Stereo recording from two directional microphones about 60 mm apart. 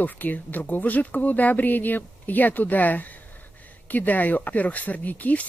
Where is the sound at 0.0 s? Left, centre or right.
Left.